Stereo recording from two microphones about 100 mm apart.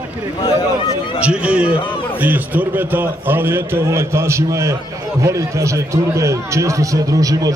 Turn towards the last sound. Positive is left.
turn(degrees=-35)  # may be behind; listen again after turning